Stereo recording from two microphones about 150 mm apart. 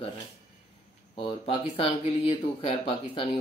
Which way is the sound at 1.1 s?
35° left (ahead or behind).